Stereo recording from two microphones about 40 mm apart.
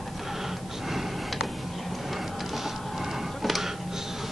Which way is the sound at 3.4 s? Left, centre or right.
Centre.